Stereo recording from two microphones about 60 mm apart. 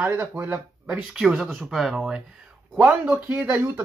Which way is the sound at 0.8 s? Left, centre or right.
Centre.